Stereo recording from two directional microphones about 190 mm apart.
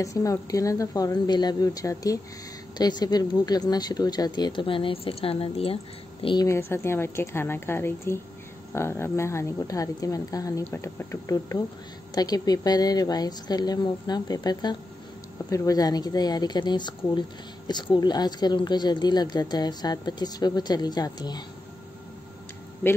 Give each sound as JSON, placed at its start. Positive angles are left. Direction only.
{"t": 0.0, "sound": "speech", "side_deg": 15}
{"t": 6.2, "sound": "speech", "side_deg": 20}